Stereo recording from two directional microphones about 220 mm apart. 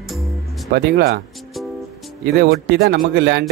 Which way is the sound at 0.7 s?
45° right (ahead or behind).